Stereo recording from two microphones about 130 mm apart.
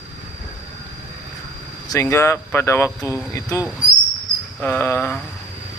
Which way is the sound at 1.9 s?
20° left (ahead or behind).